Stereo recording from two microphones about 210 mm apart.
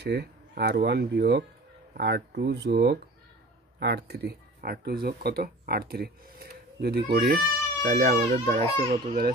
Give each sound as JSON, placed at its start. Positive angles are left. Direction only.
{"t": 0.0, "sound": "speech", "side_deg": -50}
{"t": 8.6, "sound": "speech", "side_deg": -25}